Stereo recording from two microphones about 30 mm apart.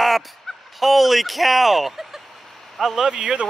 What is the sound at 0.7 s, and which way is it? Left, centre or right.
Speech, centre.